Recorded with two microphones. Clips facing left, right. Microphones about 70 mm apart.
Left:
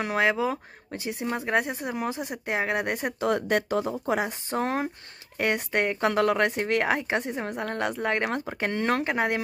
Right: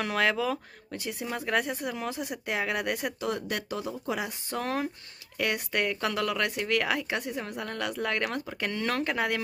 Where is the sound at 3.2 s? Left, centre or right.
Left.